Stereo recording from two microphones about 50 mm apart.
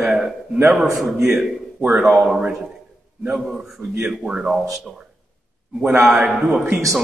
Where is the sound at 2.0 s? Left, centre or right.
Centre.